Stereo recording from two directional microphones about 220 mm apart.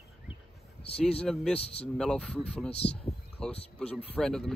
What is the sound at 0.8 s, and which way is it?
Speech, 25° left (ahead or behind).